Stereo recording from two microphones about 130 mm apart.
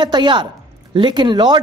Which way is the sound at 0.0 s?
35° right (ahead or behind).